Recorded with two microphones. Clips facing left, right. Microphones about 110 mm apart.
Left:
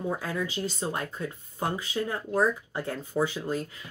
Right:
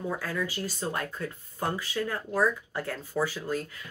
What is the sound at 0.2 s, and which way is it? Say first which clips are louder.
Speech: left 1 dB; 20° left (ahead or behind).